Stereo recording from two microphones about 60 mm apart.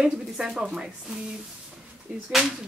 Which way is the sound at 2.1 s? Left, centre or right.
Right.